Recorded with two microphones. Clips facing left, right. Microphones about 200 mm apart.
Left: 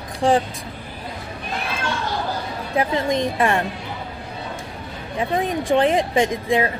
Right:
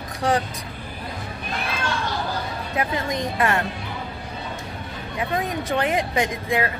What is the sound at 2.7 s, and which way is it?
Speech, 20° left (ahead or behind).